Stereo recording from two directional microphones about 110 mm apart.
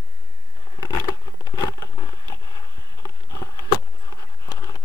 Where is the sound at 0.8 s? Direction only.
40° left (ahead or behind).